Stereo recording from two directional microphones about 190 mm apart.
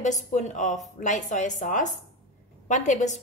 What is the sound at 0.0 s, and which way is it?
A woman's voice, 40° left (ahead or behind).